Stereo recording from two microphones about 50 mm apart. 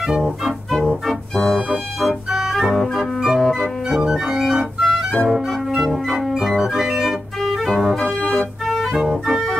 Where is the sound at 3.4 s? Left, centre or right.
Centre.